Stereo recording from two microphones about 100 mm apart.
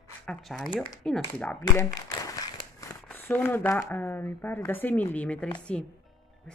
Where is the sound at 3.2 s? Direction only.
20° left (ahead or behind).